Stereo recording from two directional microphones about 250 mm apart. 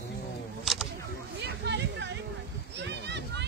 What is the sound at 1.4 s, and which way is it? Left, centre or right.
Hubbub, right.